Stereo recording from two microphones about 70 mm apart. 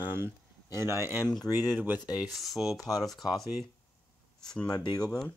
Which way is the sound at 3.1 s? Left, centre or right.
Centre.